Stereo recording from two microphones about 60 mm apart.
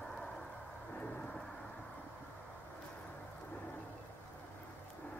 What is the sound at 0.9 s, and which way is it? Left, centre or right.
Thunder, left.